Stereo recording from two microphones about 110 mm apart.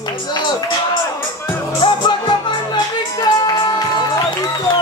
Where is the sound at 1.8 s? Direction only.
45° left (ahead or behind).